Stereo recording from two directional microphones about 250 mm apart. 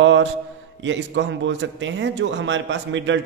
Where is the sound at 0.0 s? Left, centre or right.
Right.